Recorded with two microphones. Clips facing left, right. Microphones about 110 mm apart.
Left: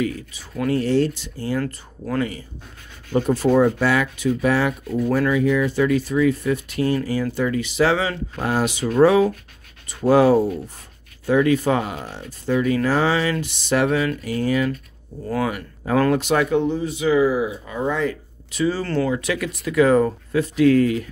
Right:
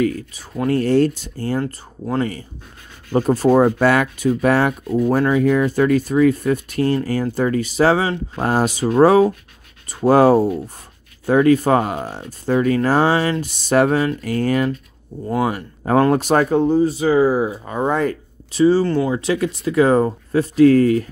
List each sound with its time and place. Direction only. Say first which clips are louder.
0.0 s speech: right 5 dB; 45° right (ahead or behind)
1.6 s speech: right 2 dB; 25° right (ahead or behind)
3.1 s speech: right 3 dB; 40° right (ahead or behind)
15.2 s speech: right 3 dB; 25° right (ahead or behind)
16.0 s speech: right 3 dB; 40° right (ahead or behind)
18.5 s speech: right 8 dB; 30° right (ahead or behind)
18.9 s speech: right 3 dB; 15° right (ahead or behind)
19.1 s speech: right 5 dB; 30° right (ahead or behind)